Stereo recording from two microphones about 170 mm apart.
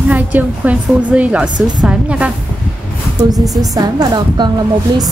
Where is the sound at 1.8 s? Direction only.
5° right (ahead or behind).